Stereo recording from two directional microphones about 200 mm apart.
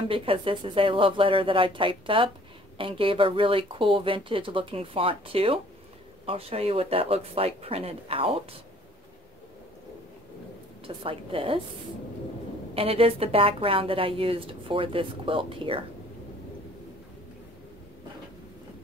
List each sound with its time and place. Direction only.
0.1 s a woman's voice: 25° right (ahead or behind)
10.9 s a woman's voice: 25° right (ahead or behind)
12.7 s a woman's voice: 30° right (ahead or behind)